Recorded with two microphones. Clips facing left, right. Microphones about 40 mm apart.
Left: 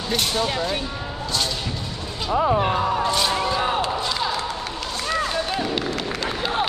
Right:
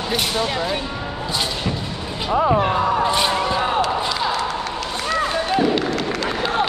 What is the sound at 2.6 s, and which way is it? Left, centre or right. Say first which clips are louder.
Music: right 3 dB; centre.